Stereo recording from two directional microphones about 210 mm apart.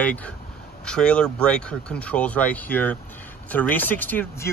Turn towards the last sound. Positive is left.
turn(degrees=10)  # may be behind; listen again after turning